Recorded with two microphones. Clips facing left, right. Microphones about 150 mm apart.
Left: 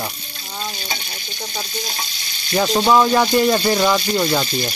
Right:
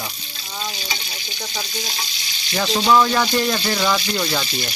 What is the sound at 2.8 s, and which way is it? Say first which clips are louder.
Speech: left 1 dB; 20° left (ahead or behind).